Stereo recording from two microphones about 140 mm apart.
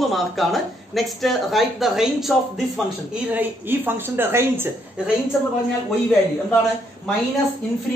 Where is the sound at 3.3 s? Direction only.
15° right (ahead or behind).